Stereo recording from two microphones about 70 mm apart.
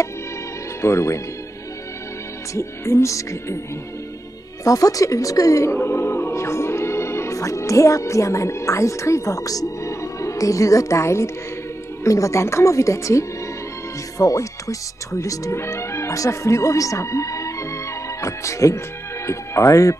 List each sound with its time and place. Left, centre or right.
0.8 s speech: left
2.5 s speech: left
4.6 s a woman's voice: left
5.8 s speech: left